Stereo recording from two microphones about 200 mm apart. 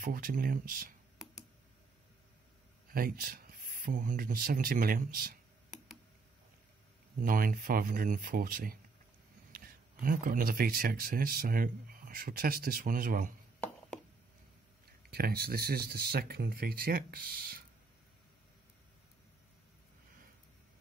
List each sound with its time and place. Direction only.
0.0 s speech: 45° right (ahead or behind)
1.1 s tick: centre (ahead or behind)
2.9 s speech: 45° right (ahead or behind)
7.2 s speech: 45° right (ahead or behind)
10.0 s speech: 45° right (ahead or behind)
15.0 s speech: 50° right (ahead or behind)